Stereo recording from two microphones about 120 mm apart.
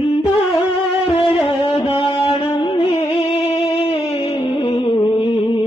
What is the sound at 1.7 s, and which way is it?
Music, 55° left (ahead or behind).